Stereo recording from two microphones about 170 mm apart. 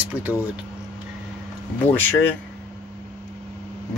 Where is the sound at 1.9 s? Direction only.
10° left (ahead or behind).